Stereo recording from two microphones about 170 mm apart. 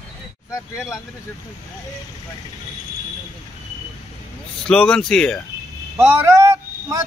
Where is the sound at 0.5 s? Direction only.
20° left (ahead or behind).